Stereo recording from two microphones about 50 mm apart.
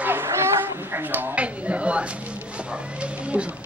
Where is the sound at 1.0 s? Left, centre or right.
Right.